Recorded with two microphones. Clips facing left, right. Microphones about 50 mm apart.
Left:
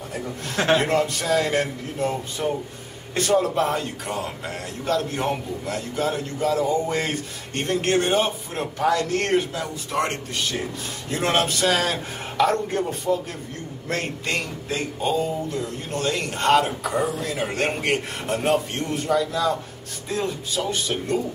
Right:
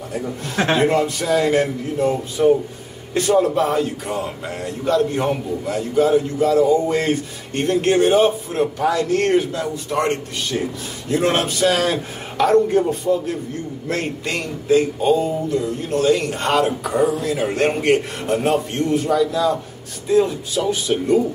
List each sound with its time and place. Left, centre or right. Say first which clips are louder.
0.7 s speech: right 4 dB; centre
8.7 s speech: even; centre
9.2 s speech: right 5 dB; centre
12.4 s speech: right 6 dB; centre
13.9 s speech: right 1 dB; centre